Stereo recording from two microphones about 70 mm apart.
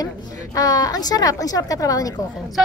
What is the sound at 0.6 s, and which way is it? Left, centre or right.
Speech, left.